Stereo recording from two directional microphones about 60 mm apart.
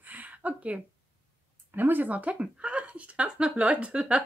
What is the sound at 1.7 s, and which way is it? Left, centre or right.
Speech, right.